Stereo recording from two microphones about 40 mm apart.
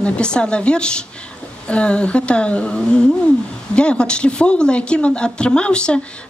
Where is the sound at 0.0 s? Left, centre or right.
Left.